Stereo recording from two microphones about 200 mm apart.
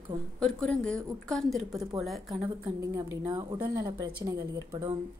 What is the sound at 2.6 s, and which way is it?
A woman's voice, 20° right (ahead or behind).